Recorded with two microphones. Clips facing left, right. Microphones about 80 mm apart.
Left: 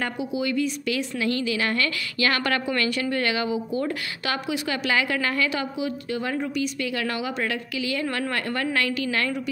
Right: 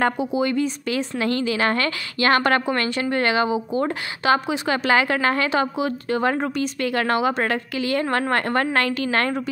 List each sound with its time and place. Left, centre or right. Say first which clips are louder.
0.0 s a woman's voice: right 6 dB; right